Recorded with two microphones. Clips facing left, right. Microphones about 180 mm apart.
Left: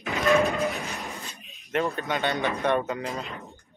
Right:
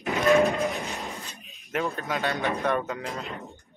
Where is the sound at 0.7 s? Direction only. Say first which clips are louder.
Right 1 dB; 20° right (ahead or behind).